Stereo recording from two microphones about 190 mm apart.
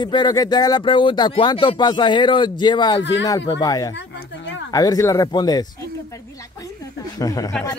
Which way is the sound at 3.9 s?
65° left (ahead or behind).